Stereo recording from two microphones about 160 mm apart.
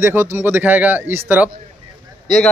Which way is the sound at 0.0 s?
15° right (ahead or behind).